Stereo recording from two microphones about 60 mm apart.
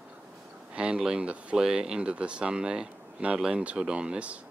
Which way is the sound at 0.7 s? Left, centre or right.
Centre.